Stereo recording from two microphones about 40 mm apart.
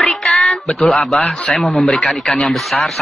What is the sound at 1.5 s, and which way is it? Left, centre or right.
Speech, centre.